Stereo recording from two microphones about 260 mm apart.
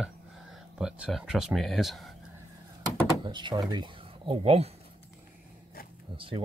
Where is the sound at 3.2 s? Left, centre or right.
Centre.